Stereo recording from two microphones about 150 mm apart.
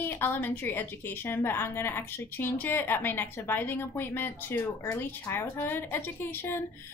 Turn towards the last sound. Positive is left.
turn(degrees=15)  # may be behind; listen again after turning